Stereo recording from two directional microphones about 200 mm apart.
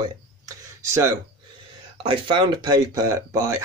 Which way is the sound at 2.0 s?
25° right (ahead or behind).